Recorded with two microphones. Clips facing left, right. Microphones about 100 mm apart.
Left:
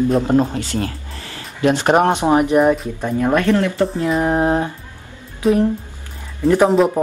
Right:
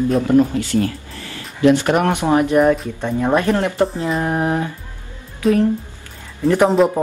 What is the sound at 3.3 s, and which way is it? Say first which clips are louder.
Speech: left 1 dB; 20° right (ahead or behind).